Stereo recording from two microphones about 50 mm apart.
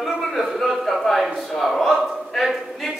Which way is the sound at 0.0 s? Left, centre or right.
Centre.